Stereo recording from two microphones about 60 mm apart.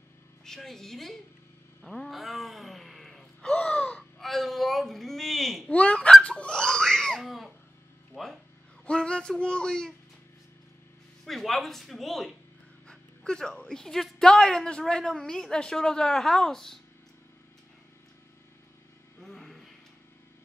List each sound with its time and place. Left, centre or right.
0.5 s a woman's voice: centre
1.8 s a sound: centre
4.2 s speech: centre
5.7 s fowl: left
5.9 s fowl: centre
6.2 s a sound: centre
7.2 s cough: centre
8.1 s a sound: centre
8.8 s a woman's voice: centre
11.2 s a woman's voice: centre
19.1 s vehicle: centre